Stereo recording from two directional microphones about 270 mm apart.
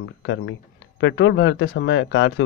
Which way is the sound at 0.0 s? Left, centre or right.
Left.